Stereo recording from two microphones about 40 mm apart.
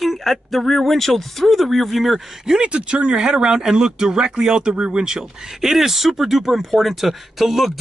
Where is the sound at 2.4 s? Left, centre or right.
Right.